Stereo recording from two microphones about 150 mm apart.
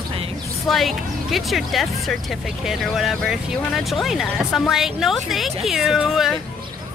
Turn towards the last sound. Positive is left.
turn(degrees=0)  # may be behind; listen again after turning